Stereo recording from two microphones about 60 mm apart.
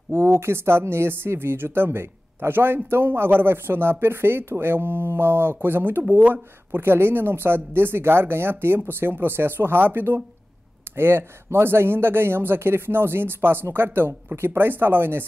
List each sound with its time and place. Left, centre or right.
0.1 s speech: right